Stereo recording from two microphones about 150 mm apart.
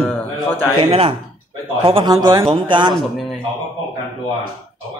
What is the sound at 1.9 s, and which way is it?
Speech, 35° right (ahead or behind).